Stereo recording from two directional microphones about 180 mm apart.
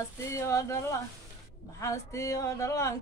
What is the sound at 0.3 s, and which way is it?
Music, 15° left (ahead or behind).